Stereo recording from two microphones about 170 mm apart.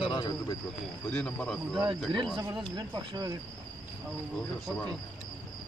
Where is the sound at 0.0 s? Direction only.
30° left (ahead or behind).